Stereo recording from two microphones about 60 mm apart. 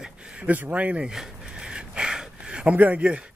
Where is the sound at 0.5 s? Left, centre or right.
Right.